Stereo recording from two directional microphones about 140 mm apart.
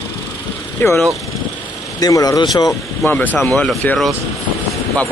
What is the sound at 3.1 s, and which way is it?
Speech, 15° left (ahead or behind).